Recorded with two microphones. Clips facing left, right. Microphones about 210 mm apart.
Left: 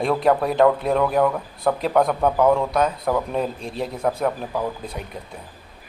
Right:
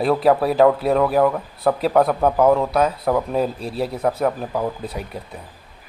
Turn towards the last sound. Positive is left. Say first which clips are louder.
# right 2 dB
turn(degrees=-10)  # may be behind; listen again after turning